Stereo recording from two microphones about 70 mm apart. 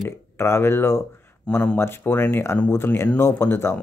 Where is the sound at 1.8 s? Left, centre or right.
Left.